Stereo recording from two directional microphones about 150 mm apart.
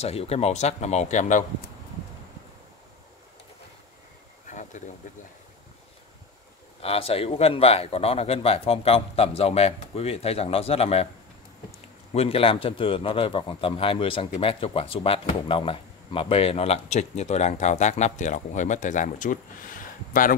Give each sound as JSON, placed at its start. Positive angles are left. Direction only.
{"t": 0.0, "sound": "speech", "side_deg": 40}
{"t": 4.5, "sound": "a sound", "side_deg": 55}
{"t": 6.8, "sound": "speech", "side_deg": 40}
{"t": 12.1, "sound": "speech", "side_deg": 40}